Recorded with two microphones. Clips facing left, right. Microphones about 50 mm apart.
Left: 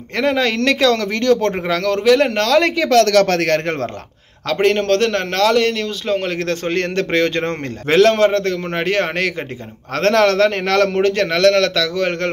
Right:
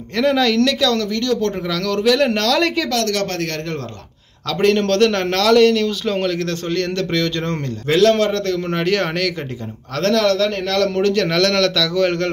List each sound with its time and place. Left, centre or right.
0.1 s a man's voice: left
0.7 s speech: left
2.0 s a man's voice: centre
3.1 s a man's voice: left
4.5 s a man's voice: left
4.7 s a man's voice: centre
6.2 s speech: left
8.1 s a man's voice: left
9.9 s speech: left
11.2 s a man's voice: centre